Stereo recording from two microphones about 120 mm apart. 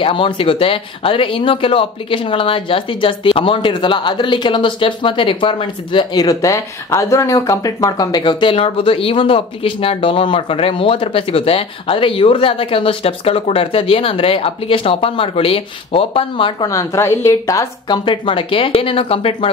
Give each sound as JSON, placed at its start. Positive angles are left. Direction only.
{"t": 0.0, "sound": "speech", "side_deg": 45}
{"t": 6.2, "sound": "speech", "side_deg": 25}
{"t": 16.6, "sound": "a woman's voice", "side_deg": 25}
{"t": 17.8, "sound": "speech", "side_deg": 40}